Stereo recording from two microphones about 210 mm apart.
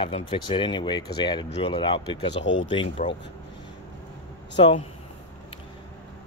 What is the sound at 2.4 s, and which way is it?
Speech, 65° left (ahead or behind).